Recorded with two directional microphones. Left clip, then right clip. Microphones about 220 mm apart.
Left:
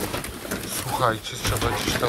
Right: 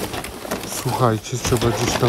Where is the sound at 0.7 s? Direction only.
50° right (ahead or behind).